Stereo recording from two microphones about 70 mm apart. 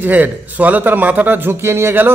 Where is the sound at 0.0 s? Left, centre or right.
Right.